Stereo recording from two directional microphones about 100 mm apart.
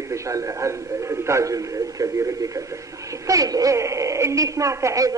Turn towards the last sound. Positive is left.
turn(degrees=-30)  # may be behind; listen again after turning